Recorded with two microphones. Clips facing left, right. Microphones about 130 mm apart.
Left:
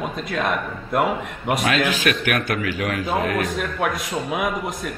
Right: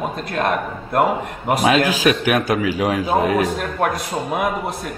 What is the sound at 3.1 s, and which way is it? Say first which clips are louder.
A man's voice: right 4 dB; 5° right (ahead or behind).